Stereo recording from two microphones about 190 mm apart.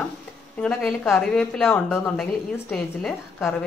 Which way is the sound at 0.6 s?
Centre (ahead or behind).